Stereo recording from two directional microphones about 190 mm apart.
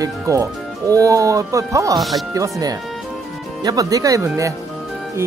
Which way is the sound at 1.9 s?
Centre (ahead or behind).